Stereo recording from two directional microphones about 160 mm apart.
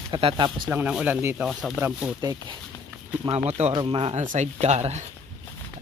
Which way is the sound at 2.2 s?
25° right (ahead or behind).